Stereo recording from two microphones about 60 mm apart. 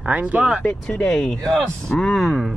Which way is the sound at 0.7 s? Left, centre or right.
Centre.